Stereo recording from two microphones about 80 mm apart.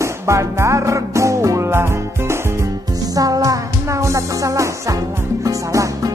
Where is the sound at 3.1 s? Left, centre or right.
Right.